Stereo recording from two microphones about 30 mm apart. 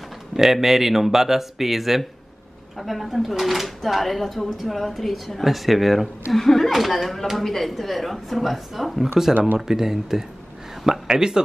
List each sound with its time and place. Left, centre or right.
0.3 s speech: centre
6.3 s speech: centre
6.7 s speech: centre; by 11.4 s right